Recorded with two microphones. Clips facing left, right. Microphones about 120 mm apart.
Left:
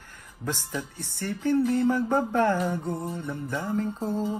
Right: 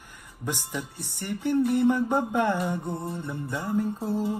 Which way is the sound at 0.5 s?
15° right (ahead or behind).